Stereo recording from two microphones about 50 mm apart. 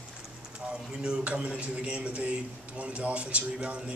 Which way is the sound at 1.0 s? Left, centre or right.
Right.